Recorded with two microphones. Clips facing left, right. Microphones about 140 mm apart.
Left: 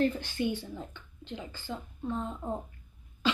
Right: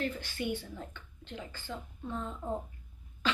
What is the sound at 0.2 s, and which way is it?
Speech, 20° left (ahead or behind).